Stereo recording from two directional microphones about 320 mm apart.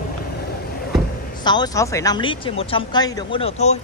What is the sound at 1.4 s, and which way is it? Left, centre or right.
Speech, centre.